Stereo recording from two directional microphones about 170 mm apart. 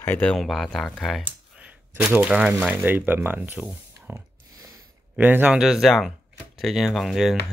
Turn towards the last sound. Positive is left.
turn(degrees=0)  # may be behind; listen again after turning